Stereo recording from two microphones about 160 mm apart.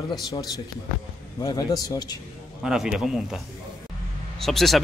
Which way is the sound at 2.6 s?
5° right (ahead or behind).